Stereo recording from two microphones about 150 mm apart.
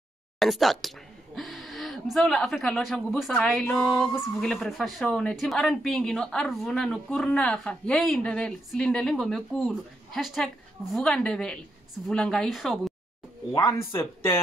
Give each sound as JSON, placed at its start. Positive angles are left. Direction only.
{"t": 0.4, "sound": "a woman's voice", "side_deg": 0}
{"t": 13.7, "sound": "speech", "side_deg": 15}